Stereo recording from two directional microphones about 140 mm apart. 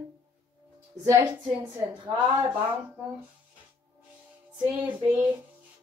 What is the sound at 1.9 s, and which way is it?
Speech, 35° right (ahead or behind).